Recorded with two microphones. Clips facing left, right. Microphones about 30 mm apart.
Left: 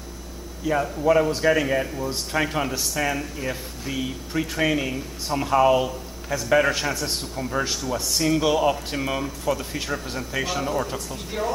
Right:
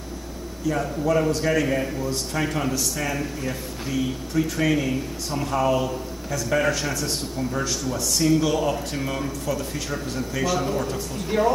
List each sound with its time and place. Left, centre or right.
0.7 s a man's voice: centre
10.6 s speech: centre
11.2 s a woman's voice: centre